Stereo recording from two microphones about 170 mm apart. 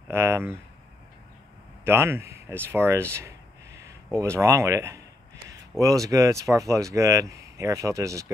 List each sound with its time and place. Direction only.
0.1 s speech: 15° right (ahead or behind)
1.9 s speech: 15° right (ahead or behind)